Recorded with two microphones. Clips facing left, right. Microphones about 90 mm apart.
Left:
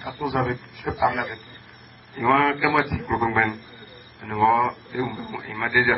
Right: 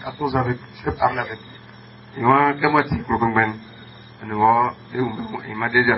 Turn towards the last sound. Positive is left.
turn(degrees=0)  # may be behind; listen again after turning